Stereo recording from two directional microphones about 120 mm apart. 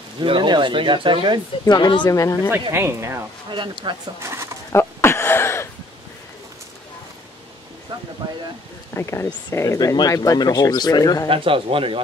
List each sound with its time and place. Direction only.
0.2 s speech: 45° right (ahead or behind)
1.7 s speech: 40° left (ahead or behind)
2.0 s speech: 25° left (ahead or behind)
2.7 s speech: 20° right (ahead or behind)
3.4 s speech: 40° right (ahead or behind)
4.2 s a sound: 25° right (ahead or behind)
4.7 s a sound: 20° left (ahead or behind)
8.9 s speech: 20° left (ahead or behind)
11.2 s speech: 50° right (ahead or behind)